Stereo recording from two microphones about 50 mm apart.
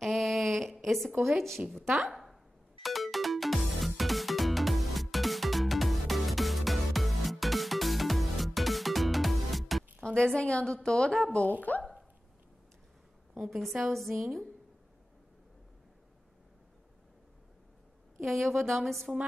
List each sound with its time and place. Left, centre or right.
0.0 s a sound: centre
0.7 s a woman's voice: centre
2.8 s music: centre
10.0 s a woman's voice: centre
11.7 s a woman's voice: left
13.3 s a woman's voice: centre
18.2 s a woman's voice: centre